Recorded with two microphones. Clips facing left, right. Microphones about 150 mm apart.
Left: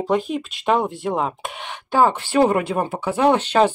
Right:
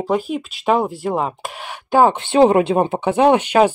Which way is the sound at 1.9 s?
20° right (ahead or behind).